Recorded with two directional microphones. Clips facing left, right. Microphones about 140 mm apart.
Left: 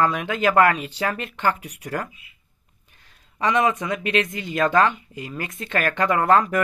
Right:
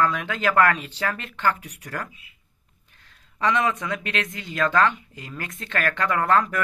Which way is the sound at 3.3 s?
15° left (ahead or behind).